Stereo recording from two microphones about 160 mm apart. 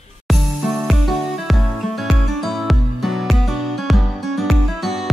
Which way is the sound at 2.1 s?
Centre (ahead or behind).